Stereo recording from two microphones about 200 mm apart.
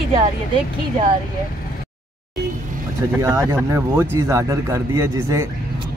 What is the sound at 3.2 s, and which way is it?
Speech, 15° right (ahead or behind).